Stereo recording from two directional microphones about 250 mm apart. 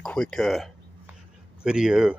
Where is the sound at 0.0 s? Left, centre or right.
Centre.